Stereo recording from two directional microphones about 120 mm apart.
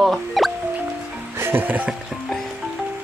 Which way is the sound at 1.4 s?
20° right (ahead or behind).